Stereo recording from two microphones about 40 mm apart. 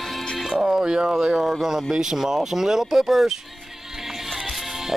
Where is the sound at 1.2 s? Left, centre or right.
Centre.